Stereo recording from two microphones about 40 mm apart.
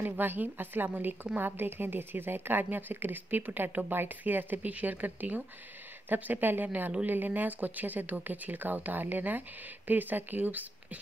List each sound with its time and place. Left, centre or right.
0.0 s a woman's voice: right